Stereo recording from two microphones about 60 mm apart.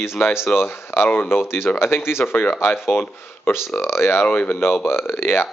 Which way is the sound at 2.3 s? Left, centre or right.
Left.